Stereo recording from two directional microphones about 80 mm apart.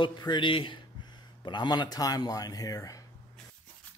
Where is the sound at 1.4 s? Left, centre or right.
Left.